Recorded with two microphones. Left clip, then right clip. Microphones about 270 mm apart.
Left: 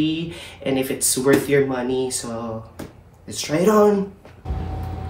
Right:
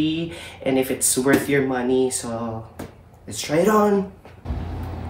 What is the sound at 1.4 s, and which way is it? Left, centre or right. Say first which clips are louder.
Speech: left 2 dB; centre.